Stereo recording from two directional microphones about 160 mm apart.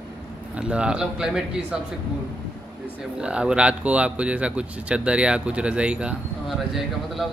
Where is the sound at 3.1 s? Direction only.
5° right (ahead or behind).